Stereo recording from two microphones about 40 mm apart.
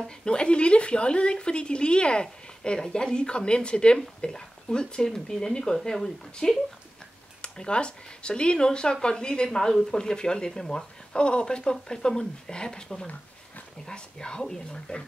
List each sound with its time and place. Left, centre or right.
0.2 s speech: left
11.1 s speech: left